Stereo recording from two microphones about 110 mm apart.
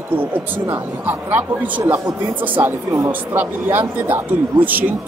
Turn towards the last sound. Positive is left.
turn(degrees=-15)  # may be behind; listen again after turning